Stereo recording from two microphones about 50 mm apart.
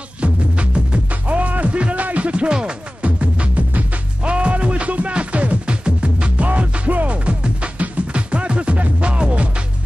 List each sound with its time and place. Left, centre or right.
0.2 s music: right